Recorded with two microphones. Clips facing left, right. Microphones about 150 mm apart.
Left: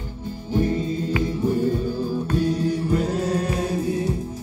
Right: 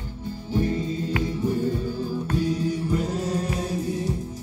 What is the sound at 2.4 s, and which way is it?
Music, 65° left (ahead or behind).